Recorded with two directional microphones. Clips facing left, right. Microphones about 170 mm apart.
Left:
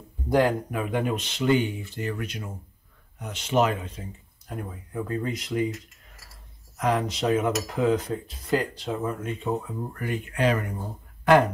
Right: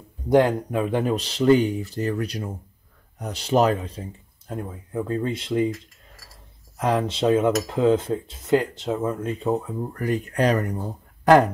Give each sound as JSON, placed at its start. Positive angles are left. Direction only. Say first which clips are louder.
{"t": 0.3, "sound": "speech", "louder": "right 4 dB", "side_deg": -20}
{"t": 4.5, "sound": "cutlery", "louder": "right 4 dB", "side_deg": -25}
{"t": 6.8, "sound": "cutlery", "louder": "right 3 dB", "side_deg": -30}